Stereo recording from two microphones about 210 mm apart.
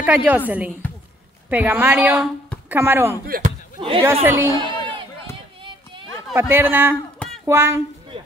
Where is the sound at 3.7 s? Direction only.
25° right (ahead or behind).